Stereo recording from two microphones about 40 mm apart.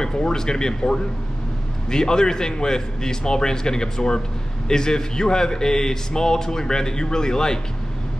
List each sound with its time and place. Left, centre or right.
0.0 s a man's voice: centre